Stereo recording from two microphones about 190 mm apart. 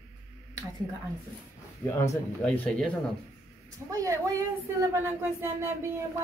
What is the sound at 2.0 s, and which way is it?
Speech, 5° left (ahead or behind).